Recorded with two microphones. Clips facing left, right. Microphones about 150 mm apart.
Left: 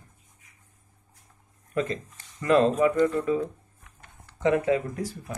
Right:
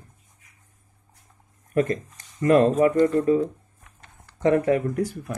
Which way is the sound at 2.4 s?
30° right (ahead or behind).